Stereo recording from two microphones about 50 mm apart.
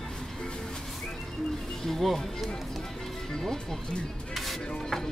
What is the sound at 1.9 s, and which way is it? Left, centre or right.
Speech, centre.